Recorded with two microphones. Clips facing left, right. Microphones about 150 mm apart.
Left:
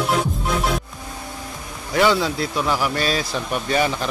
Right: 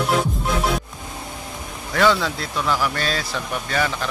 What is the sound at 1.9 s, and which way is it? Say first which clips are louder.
A man's voice: left 1 dB; 15° left (ahead or behind).